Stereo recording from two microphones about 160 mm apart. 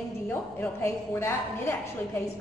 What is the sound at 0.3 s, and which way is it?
A woman's voice, 15° left (ahead or behind).